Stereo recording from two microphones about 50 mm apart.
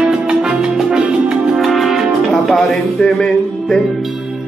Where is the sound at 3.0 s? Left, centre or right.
Centre.